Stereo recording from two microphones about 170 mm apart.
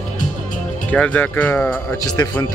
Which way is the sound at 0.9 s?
10° left (ahead or behind).